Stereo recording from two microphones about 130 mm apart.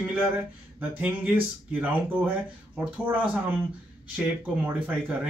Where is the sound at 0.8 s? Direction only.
15° right (ahead or behind).